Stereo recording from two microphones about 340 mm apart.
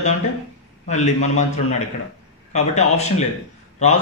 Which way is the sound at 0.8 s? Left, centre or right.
Left.